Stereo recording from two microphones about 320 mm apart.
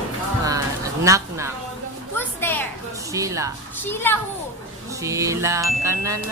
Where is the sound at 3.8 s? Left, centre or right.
Centre.